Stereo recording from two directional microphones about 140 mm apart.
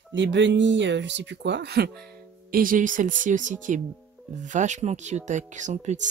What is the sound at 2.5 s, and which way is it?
Speech, 80° right.